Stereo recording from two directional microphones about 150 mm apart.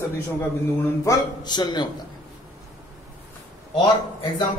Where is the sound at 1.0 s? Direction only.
25° left (ahead or behind).